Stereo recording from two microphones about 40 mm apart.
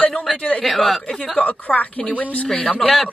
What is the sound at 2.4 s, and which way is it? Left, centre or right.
Speech, centre.